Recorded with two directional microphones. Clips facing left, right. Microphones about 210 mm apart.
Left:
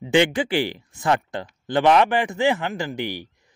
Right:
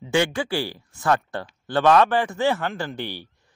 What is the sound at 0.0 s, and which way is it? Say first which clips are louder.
A man's voice: left 3 dB; 20° left (ahead or behind).